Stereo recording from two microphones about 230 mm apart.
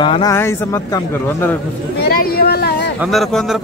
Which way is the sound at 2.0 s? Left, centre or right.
Left.